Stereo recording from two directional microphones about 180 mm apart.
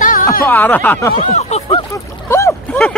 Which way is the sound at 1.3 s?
35° left (ahead or behind).